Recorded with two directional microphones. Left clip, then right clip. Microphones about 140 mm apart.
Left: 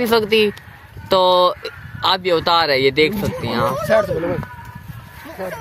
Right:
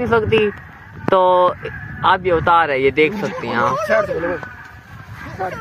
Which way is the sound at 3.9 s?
70° left (ahead or behind).